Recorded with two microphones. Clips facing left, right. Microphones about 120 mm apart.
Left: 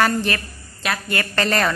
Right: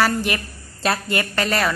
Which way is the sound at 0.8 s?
35° right (ahead or behind).